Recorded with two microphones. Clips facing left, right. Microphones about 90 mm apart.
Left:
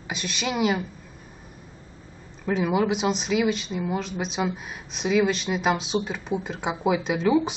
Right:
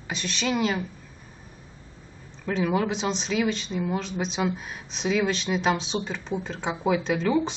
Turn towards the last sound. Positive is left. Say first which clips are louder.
# left 2 dB
turn(degrees=5)  # may be behind; listen again after turning